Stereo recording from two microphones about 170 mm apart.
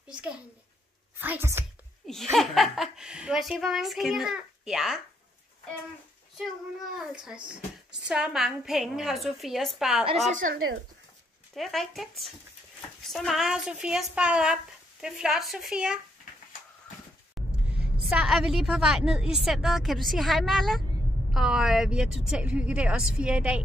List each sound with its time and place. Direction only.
0.1 s a child's voice: 5° right (ahead or behind)
2.0 s speech: centre (ahead or behind)
8.1 s speech: 5° right (ahead or behind)
10.3 s speech: 60° right (ahead or behind)
11.5 s speech: centre (ahead or behind)
17.4 s a sound: centre (ahead or behind)
18.0 s speech: centre (ahead or behind)